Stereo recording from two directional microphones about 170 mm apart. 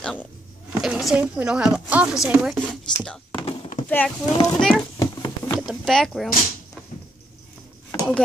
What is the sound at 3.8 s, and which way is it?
A child's voice, 10° left (ahead or behind).